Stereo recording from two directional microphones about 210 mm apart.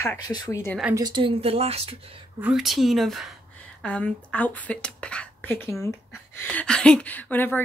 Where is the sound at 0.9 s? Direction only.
20° right (ahead or behind).